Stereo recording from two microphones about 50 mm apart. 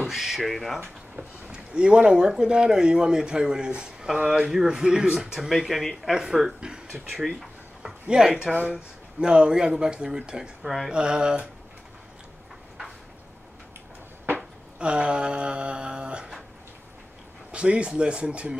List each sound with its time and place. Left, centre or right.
0.0 s speech: centre
1.1 s speech: centre
7.1 s speech: centre
7.8 s speech: centre
14.8 s speech: right
17.5 s speech: right